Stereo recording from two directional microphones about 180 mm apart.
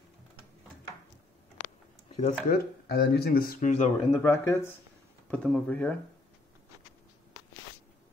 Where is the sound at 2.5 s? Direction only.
60° left (ahead or behind); by 3.9 s 45° left (ahead or behind).